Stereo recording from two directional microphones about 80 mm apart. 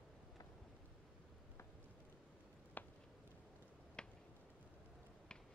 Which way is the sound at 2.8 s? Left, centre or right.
Left.